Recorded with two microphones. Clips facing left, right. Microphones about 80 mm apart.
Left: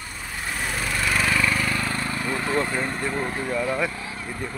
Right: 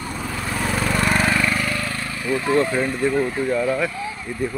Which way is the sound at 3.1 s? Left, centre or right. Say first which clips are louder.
Right 6 dB; left.